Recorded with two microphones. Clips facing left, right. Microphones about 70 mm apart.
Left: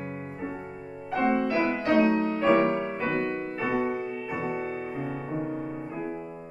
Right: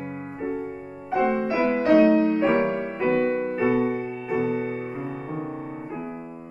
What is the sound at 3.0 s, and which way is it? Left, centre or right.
Music, right.